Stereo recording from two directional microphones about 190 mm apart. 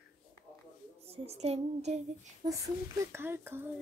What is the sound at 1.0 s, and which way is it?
Female singing, 30° right (ahead or behind).